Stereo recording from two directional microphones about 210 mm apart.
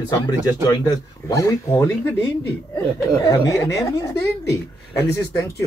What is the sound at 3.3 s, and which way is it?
Speech, 15° left (ahead or behind).